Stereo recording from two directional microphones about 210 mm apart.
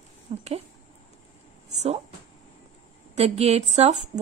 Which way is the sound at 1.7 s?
30° right (ahead or behind).